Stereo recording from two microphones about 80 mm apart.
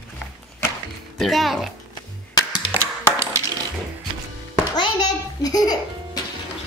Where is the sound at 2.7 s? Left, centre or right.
Right.